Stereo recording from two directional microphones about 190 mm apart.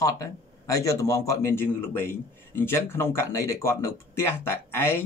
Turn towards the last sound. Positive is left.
turn(degrees=10)  # may be behind; listen again after turning